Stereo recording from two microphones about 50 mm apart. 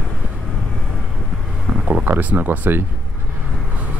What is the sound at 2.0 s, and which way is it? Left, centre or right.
Speech, right.